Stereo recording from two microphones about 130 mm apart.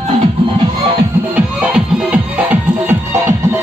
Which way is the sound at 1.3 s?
10° right (ahead or behind).